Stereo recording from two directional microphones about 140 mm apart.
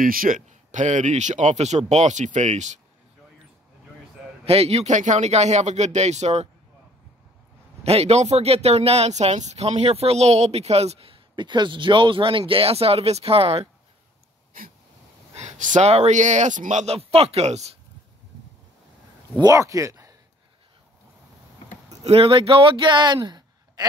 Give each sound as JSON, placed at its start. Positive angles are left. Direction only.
{"t": 0.0, "sound": "speech", "side_deg": -90}
{"t": 4.5, "sound": "speech", "side_deg": -45}
{"t": 7.8, "sound": "speech", "side_deg": -45}
{"t": 15.3, "sound": "speech", "side_deg": -60}
{"t": 19.4, "sound": "speech", "side_deg": -25}
{"t": 22.0, "sound": "a man's voice", "side_deg": -40}